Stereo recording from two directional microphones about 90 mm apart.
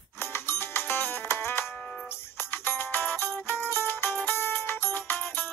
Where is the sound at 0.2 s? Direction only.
25° left (ahead or behind).